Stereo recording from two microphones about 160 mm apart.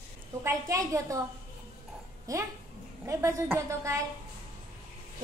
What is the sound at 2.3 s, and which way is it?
A woman's voice, 20° right (ahead or behind).